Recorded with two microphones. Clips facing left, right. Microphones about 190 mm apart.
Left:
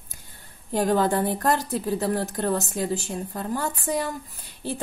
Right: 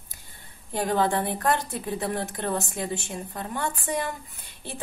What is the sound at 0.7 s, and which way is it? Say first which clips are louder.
A woman's voice: left 3 dB; 45° left (ahead or behind).